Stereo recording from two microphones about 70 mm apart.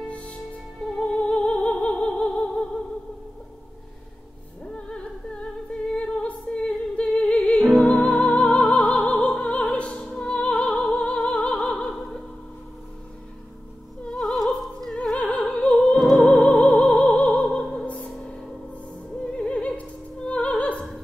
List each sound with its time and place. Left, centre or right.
0.1 s music: centre
4.6 s music: centre
7.7 s music: centre
11.4 s opera: centre
11.9 s opera: centre
14.0 s opera: centre
15.0 s opera: centre
15.7 s opera: centre
17.6 s music: centre
19.2 s opera: centre